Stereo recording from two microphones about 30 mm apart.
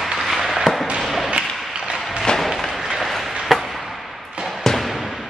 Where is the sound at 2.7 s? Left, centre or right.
Centre.